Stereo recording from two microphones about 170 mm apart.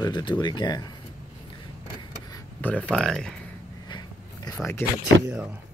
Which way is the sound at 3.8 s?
25° left (ahead or behind).